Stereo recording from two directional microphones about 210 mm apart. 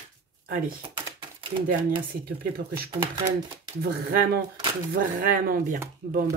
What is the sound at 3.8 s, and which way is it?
Speech, 45° right (ahead or behind).